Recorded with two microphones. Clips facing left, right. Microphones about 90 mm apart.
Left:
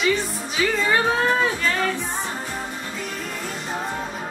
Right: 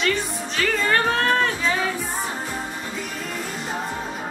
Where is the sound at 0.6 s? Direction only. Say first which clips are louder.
Left 1 dB; 10° left (ahead or behind).